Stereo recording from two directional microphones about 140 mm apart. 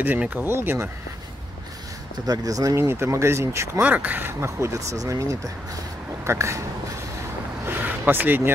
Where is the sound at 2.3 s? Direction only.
25° right (ahead or behind).